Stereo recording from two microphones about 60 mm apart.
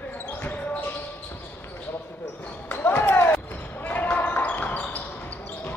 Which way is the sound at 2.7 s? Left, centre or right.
Left.